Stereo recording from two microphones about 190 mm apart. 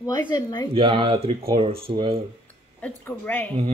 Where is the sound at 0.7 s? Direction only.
30° right (ahead or behind).